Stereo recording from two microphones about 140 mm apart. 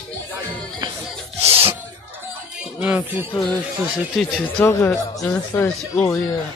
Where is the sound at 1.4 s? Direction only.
45° right (ahead or behind).